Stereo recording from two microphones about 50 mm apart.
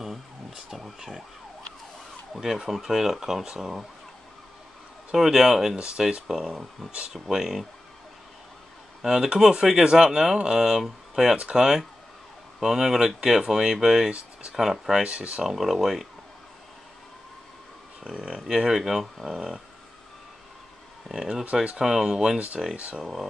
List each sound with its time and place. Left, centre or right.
0.7 s speech: centre
2.3 s speech: centre
5.1 s speech: centre
5.8 s speech: centre
6.9 s speech: right
7.2 s speech: centre
9.0 s speech: centre
15.0 s speech: right
15.4 s speech: centre
18.0 s speech: centre
21.1 s speech: centre
22.8 s speech: right